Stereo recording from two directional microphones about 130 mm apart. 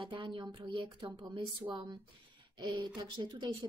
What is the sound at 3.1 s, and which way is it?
Speech, 35° right (ahead or behind).